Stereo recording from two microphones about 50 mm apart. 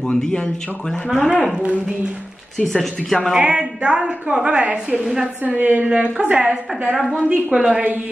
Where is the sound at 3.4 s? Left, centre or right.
Right.